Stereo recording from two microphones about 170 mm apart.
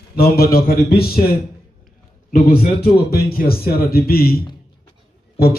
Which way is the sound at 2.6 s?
65° left (ahead or behind).